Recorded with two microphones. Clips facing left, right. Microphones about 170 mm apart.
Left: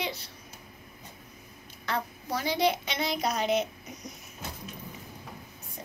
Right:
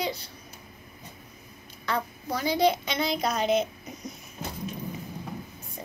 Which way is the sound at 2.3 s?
Centre (ahead or behind).